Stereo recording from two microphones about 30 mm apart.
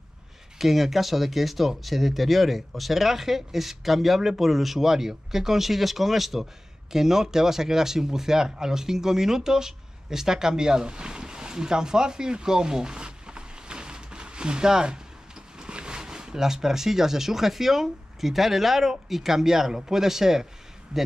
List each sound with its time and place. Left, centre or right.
0.6 s speech: centre
6.9 s speech: centre